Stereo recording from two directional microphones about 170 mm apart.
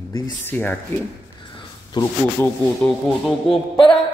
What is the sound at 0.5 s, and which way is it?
Speech, 10° left (ahead or behind).